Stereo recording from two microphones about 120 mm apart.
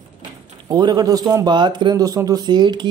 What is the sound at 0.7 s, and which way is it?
Speech, 35° right (ahead or behind).